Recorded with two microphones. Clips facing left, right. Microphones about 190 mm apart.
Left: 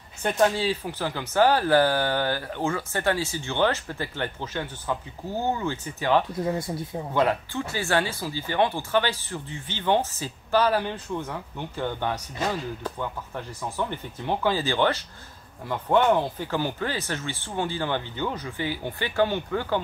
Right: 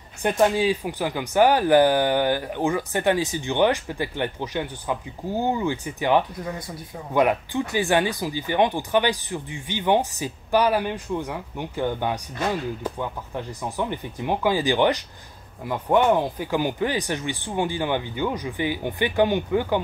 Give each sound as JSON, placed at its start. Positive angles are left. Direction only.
{"t": 0.2, "sound": "speech", "side_deg": -15}
{"t": 6.4, "sound": "speech", "side_deg": 25}
{"t": 7.2, "sound": "speech", "side_deg": -15}